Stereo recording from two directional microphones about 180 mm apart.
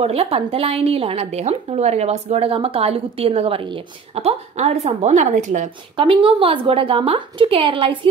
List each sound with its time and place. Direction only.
0.0 s a woman's voice: 35° right (ahead or behind)
5.9 s a woman's voice: 30° right (ahead or behind)